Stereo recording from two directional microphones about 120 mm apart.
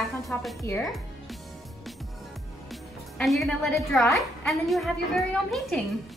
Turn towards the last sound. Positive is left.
turn(degrees=0)  # may be behind; listen again after turning